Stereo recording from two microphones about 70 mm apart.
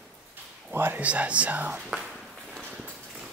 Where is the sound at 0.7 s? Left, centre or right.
Right.